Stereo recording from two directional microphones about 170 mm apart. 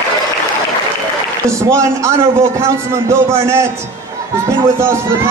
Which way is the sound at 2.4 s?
15° right (ahead or behind).